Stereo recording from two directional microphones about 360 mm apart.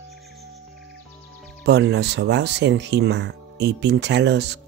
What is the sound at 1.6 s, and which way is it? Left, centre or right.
Speech, right.